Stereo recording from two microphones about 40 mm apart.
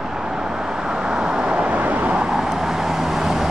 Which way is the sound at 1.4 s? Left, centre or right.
Right.